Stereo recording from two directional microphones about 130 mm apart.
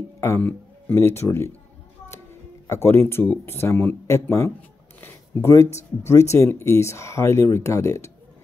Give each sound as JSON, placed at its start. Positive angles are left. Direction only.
{"t": 0.2, "sound": "speech", "side_deg": 15}
{"t": 2.7, "sound": "speech", "side_deg": 20}